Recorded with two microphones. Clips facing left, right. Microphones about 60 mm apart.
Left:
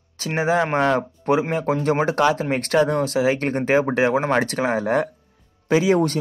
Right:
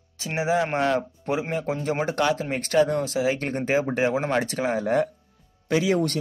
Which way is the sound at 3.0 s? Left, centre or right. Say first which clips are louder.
Left 5 dB; left.